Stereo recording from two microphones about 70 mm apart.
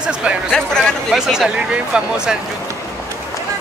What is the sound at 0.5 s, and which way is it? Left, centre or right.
Speech, centre.